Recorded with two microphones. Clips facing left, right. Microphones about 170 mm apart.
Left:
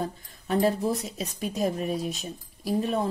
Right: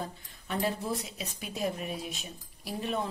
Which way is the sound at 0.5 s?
40° left (ahead or behind).